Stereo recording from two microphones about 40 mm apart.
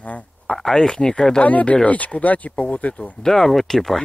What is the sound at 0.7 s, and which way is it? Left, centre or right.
Speech, centre.